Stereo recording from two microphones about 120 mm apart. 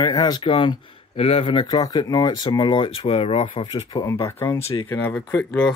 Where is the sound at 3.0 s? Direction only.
55° left (ahead or behind).